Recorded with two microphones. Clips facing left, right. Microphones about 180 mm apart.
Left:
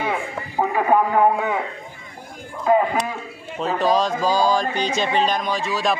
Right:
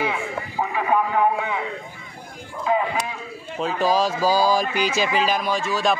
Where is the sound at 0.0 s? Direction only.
45° left (ahead or behind).